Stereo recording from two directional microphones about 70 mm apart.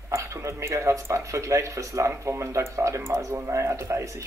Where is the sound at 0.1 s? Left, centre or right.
Right.